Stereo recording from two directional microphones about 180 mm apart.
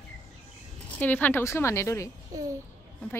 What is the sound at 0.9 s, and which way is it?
A woman's voice, 10° left (ahead or behind).